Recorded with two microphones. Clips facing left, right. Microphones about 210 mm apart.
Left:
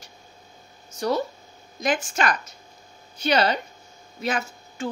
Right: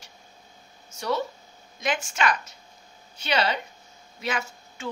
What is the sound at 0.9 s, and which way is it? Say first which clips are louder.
A woman's voice: left 3 dB; 40° left (ahead or behind).